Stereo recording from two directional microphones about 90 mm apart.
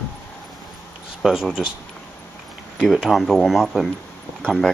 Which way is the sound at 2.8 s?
5° right (ahead or behind).